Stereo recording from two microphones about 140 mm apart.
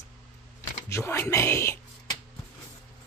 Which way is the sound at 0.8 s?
20° left (ahead or behind).